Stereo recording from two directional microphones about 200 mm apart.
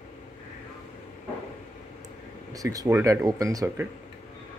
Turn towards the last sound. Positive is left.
turn(degrees=-15)  # may be behind; listen again after turning